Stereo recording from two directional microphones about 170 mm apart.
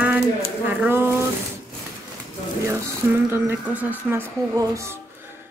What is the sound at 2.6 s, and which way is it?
Speech, 15° right (ahead or behind).